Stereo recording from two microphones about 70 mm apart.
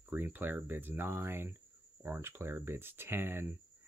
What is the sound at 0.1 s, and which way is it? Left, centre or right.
Speech, right.